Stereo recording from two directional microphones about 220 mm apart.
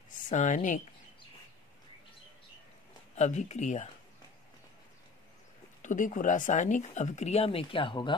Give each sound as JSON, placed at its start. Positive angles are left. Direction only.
{"t": 0.3, "sound": "speech", "side_deg": 35}
{"t": 3.2, "sound": "speech", "side_deg": 30}
{"t": 5.8, "sound": "speech", "side_deg": 35}